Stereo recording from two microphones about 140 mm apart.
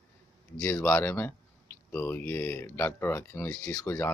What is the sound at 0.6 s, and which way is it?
Speech, 10° left (ahead or behind).